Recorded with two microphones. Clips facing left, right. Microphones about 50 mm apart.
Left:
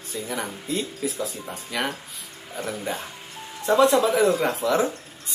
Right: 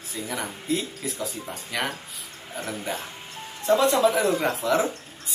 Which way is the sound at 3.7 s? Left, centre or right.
Left.